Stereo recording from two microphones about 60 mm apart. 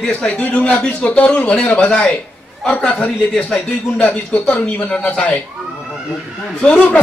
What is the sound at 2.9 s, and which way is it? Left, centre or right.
Speech, left.